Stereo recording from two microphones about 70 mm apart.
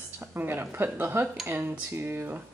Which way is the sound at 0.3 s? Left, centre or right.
Right.